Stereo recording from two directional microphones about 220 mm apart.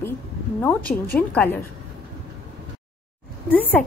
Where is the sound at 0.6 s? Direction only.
5° left (ahead or behind).